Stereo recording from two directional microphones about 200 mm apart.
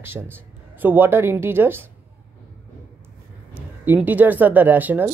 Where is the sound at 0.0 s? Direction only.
10° right (ahead or behind).